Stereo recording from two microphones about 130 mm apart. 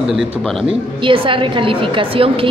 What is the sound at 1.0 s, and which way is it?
A woman's voice, 40° right (ahead or behind).